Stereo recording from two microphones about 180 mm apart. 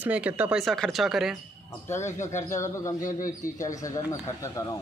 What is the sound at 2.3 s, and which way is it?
Speech, 15° left (ahead or behind).